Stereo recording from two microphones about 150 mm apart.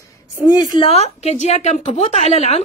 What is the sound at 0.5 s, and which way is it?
Speech, 25° left (ahead or behind).